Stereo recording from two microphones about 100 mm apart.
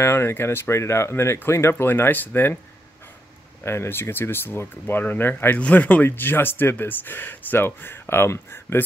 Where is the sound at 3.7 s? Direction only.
25° left (ahead or behind).